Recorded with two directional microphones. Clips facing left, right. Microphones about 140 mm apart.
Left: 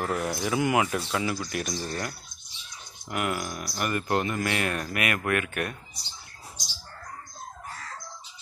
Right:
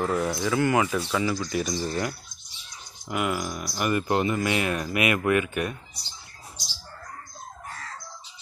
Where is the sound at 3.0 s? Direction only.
Centre (ahead or behind).